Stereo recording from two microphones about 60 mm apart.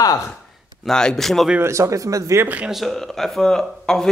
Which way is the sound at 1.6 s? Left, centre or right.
Right.